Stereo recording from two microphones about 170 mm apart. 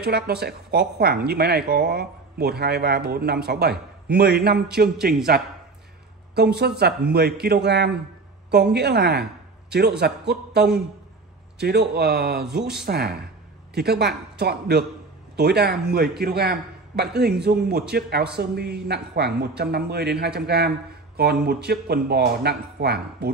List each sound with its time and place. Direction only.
0.0 s a man's voice: 70° right (ahead or behind)